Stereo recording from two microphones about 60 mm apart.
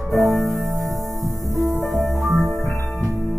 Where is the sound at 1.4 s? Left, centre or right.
Right.